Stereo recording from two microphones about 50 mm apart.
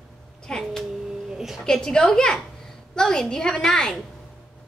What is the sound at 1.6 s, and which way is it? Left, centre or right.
A woman's voice, centre.